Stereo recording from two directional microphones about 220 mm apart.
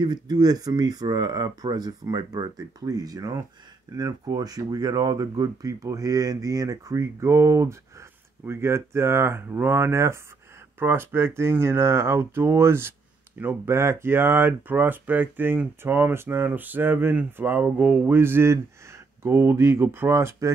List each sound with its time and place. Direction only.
0.0 s speech: 20° right (ahead or behind)